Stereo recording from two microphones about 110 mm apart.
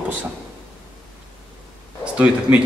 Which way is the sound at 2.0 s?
10° right (ahead or behind).